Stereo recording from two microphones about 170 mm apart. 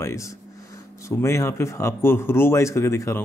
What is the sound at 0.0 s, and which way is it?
Speech, 20° left (ahead or behind).